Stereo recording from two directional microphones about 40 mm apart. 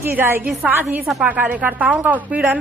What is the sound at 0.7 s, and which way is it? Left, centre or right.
A woman's voice, right.